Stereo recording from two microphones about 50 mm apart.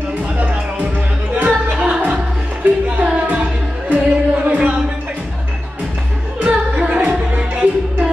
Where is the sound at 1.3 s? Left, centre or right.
Right.